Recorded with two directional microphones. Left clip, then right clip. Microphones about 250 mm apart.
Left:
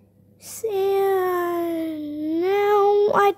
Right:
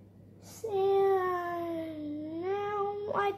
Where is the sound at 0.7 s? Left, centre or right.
Left.